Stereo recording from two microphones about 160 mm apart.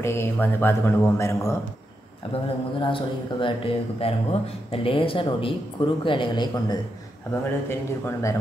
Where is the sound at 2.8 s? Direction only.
30° left (ahead or behind).